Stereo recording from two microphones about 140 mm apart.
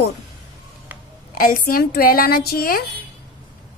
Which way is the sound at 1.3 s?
90° left.